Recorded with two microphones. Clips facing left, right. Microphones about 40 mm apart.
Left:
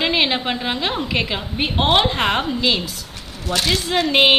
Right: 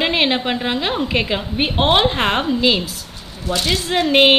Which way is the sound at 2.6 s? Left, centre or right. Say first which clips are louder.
Right 3 dB; centre.